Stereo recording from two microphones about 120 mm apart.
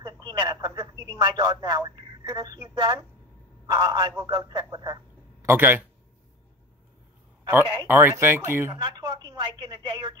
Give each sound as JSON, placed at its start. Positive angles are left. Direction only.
{"t": 0.0, "sound": "speech", "side_deg": -40}
{"t": 2.7, "sound": "speech", "side_deg": -45}
{"t": 5.4, "sound": "speech", "side_deg": -20}
{"t": 7.4, "sound": "a man's voice", "side_deg": -20}
{"t": 8.8, "sound": "speech", "side_deg": -35}